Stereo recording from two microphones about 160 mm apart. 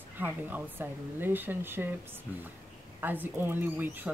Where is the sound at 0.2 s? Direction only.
10° right (ahead or behind).